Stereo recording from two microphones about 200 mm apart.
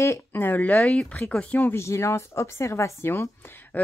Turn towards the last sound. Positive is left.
turn(degrees=10)  # may be behind; listen again after turning